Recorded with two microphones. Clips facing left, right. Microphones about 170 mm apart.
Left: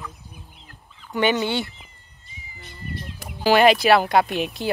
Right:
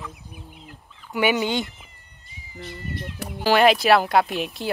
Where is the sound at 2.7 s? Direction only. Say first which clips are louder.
Right 2 dB; 65° right (ahead or behind).